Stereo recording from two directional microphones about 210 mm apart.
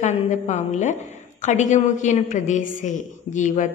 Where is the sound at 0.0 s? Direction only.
35° left (ahead or behind).